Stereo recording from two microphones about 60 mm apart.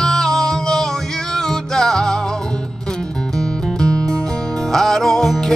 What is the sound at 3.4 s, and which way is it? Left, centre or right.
Music, centre.